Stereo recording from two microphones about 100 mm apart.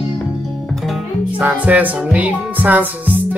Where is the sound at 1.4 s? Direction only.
15° right (ahead or behind).